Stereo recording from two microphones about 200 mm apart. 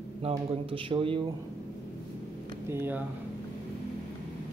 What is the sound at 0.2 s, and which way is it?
Speech, 30° right (ahead or behind).